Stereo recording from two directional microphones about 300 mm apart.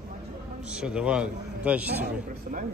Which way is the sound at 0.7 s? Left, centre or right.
Centre.